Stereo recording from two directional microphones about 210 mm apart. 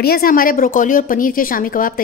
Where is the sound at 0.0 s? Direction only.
45° left (ahead or behind).